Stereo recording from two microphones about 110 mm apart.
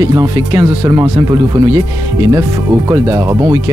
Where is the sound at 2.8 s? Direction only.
30° right (ahead or behind).